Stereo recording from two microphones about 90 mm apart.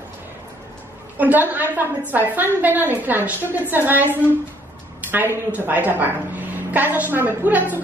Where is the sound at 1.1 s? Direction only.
20° right (ahead or behind).